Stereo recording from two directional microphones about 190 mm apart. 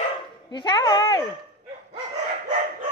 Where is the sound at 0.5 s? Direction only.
20° left (ahead or behind).